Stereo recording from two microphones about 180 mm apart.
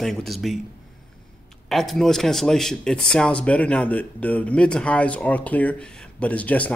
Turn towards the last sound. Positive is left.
turn(degrees=10)  # may be behind; listen again after turning